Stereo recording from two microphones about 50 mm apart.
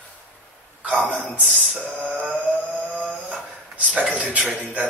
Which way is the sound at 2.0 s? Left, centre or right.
Right.